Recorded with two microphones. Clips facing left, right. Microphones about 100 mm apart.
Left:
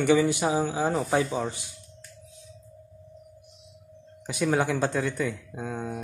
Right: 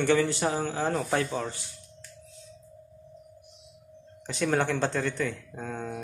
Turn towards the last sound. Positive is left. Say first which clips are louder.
# left 2 dB
turn(degrees=10)  # may be behind; listen again after turning